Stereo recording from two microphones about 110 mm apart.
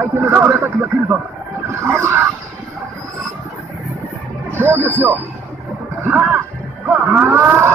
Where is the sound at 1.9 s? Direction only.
25° right (ahead or behind).